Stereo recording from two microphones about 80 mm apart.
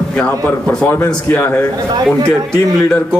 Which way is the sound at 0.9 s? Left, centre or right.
Left.